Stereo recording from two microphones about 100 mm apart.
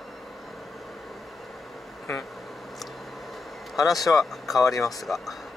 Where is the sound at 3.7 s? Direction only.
Centre (ahead or behind).